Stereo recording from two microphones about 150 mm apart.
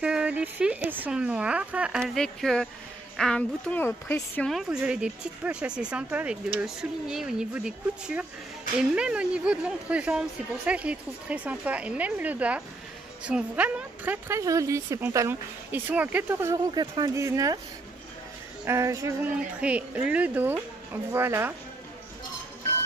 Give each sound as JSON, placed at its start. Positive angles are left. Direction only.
{"t": 0.0, "sound": "a woman's voice", "side_deg": -5}
{"t": 4.5, "sound": "speech", "side_deg": -5}
{"t": 16.7, "sound": "speech", "side_deg": -30}
{"t": 18.7, "sound": "speech", "side_deg": -20}